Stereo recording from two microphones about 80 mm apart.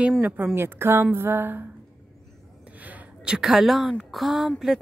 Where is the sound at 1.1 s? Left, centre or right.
Right.